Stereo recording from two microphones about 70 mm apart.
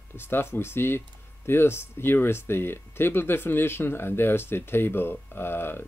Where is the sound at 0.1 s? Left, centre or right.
Left.